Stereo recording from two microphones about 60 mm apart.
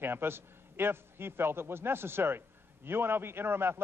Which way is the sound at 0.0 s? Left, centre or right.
Right.